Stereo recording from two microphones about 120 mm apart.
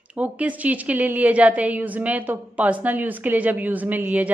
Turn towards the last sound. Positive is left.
turn(degrees=-15)  # may be behind; listen again after turning